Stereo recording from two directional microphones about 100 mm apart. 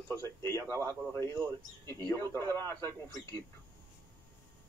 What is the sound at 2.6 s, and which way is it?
Speech, 40° right (ahead or behind).